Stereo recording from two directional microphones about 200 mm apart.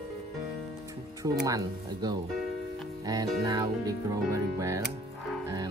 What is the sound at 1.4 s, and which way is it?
Speech, 20° right (ahead or behind).